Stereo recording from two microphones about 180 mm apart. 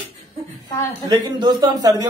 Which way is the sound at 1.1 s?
25° right (ahead or behind).